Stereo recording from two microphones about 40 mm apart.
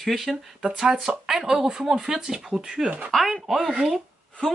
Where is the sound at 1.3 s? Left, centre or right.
Centre.